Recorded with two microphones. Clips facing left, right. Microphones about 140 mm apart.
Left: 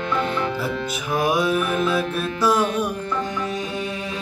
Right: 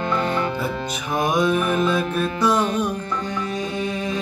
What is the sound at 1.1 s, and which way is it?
Music, 5° left (ahead or behind).